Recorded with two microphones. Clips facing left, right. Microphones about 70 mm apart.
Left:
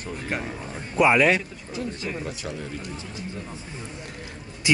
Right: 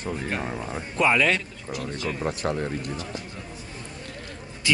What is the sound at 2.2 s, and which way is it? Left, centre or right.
Speech, right.